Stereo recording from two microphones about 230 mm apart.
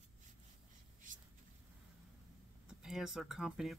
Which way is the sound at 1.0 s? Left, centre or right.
Right.